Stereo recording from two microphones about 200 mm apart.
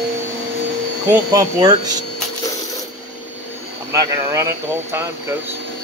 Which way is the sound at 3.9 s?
15° right (ahead or behind).